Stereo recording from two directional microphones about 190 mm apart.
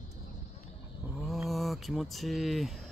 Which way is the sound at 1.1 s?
Centre (ahead or behind).